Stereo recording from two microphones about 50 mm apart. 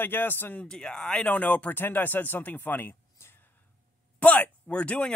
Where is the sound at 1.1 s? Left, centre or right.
Left.